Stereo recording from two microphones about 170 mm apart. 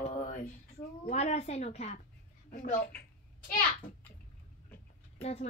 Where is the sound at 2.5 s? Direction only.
60° left (ahead or behind).